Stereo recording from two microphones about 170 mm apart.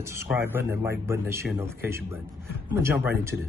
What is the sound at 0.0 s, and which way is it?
Speech, 15° right (ahead or behind).